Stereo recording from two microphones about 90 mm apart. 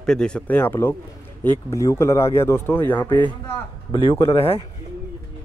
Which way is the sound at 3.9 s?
75° left (ahead or behind).